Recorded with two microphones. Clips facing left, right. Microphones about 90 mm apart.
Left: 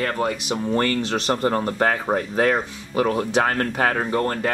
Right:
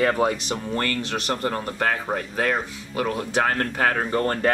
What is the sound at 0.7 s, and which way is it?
Speech, 25° left (ahead or behind).